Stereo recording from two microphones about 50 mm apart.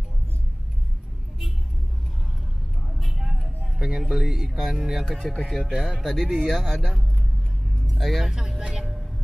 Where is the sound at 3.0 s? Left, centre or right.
Centre.